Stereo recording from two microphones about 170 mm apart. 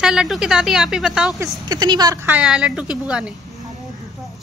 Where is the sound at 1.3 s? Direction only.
20° right (ahead or behind).